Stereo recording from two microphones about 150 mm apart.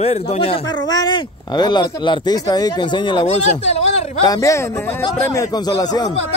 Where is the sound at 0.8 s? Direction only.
25° left (ahead or behind).